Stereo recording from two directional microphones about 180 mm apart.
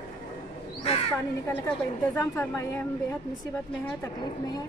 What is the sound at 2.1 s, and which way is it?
Speech, 10° left (ahead or behind).